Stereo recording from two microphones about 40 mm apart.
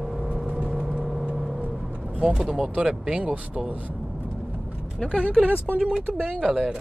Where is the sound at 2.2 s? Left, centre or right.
Centre.